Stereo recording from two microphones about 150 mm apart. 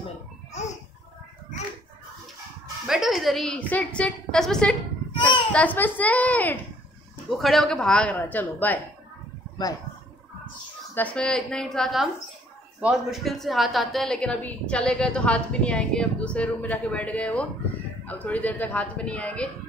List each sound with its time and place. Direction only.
0.5 s a sound: 50° left (ahead or behind)
2.9 s a woman's voice: centre (ahead or behind)
5.1 s children playing: 30° left (ahead or behind)
5.5 s a woman's voice: 10° left (ahead or behind)
11.0 s a woman's voice: 10° left (ahead or behind)